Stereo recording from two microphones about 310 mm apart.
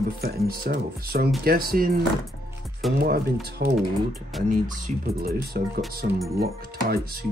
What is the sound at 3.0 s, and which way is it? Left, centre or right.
Speech, right.